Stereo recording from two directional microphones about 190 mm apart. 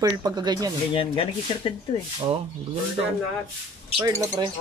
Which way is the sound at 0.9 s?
30° left (ahead or behind).